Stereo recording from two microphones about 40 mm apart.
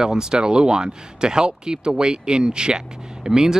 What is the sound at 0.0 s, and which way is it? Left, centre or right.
Speech, centre.